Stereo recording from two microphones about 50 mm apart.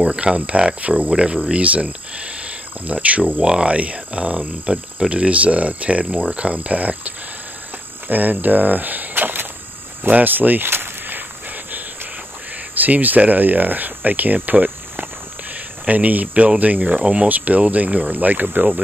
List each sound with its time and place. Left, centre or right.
0.0 s speech: right
10.7 s a sound: right
12.7 s speech: right
15.5 s cricket: right
17.3 s speech: right